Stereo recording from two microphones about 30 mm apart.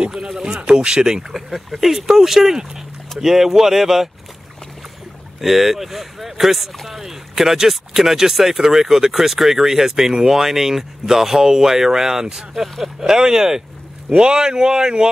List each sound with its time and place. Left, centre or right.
0.1 s speech: centre
1.3 s speech: centre
5.4 s speech: centre; by 15.0 s right